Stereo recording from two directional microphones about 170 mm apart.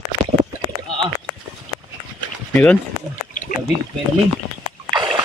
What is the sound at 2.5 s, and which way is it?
Speech, 5° left (ahead or behind).